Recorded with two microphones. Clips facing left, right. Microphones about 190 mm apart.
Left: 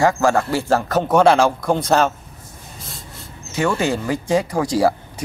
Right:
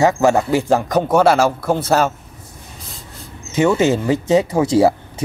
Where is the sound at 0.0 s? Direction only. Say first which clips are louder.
Right 3 dB; 20° right (ahead or behind).